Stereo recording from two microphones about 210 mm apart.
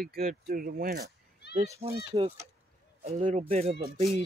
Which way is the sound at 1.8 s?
25° right (ahead or behind).